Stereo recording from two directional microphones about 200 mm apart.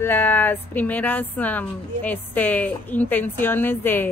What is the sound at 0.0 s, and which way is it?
Speech, 10° left (ahead or behind).